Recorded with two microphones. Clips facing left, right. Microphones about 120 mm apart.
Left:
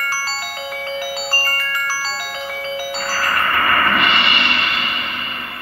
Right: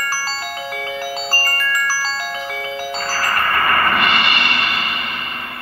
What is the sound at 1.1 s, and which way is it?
Glockenspiel, 40° right (ahead or behind).